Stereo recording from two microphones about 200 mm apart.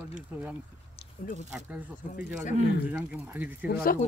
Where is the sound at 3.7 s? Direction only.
50° left (ahead or behind).